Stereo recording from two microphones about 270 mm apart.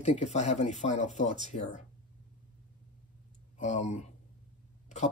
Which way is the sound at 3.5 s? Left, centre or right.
Left.